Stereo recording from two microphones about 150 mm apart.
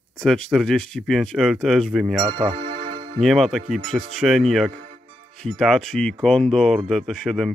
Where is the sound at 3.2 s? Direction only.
Centre (ahead or behind).